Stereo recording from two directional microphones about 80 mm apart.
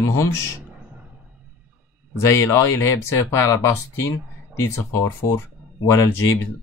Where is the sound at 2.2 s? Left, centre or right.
Left.